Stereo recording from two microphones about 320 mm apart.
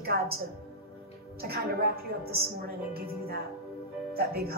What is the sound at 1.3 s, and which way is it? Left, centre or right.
A woman's voice, right.